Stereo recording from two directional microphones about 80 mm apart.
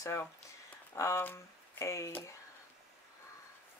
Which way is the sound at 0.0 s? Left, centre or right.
Left.